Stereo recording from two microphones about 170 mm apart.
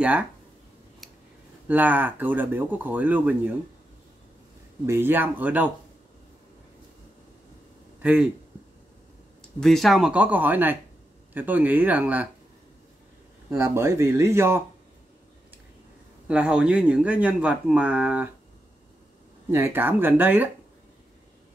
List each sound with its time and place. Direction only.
0.0 s speech: 10° right (ahead or behind)
1.7 s speech: 10° right (ahead or behind)
4.8 s speech: 15° right (ahead or behind)
8.0 s speech: 5° right (ahead or behind)
9.6 s speech: centre (ahead or behind)
13.5 s speech: 15° right (ahead or behind)
16.3 s speech: 5° right (ahead or behind)
19.5 s speech: 15° right (ahead or behind)